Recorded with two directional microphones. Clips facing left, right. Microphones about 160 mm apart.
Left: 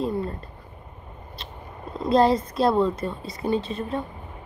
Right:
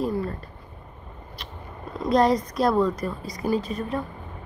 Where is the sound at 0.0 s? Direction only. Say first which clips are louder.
Even; 25° left (ahead or behind).